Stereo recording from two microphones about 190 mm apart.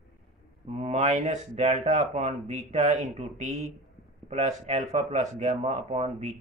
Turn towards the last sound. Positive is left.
turn(degrees=-35)  # may be behind; listen again after turning